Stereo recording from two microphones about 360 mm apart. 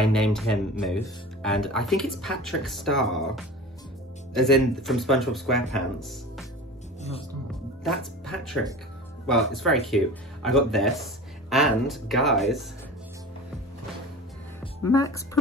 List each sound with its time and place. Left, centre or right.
0.0 s speech: centre
4.3 s speech: centre
7.0 s music: centre
7.8 s speech: centre
14.6 s a woman's voice: centre